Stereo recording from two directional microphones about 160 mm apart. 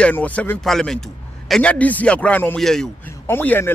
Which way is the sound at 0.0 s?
10° left (ahead or behind).